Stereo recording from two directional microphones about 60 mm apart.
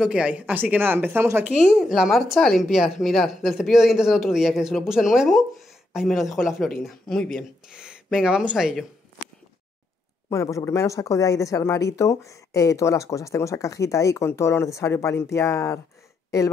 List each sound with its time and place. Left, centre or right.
0.0 s speech: centre; by 1.4 s right
1.4 s speech: centre
10.3 s speech: left